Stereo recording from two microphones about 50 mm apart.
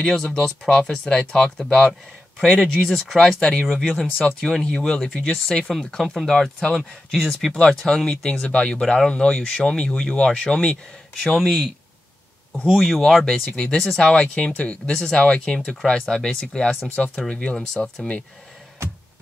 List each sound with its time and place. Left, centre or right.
0.0 s speech: centre
1.9 s speech: centre
3.6 s speech: centre
4.4 s speech: centre
11.3 s speech: centre
16.9 s speech: left
17.6 s speech: centre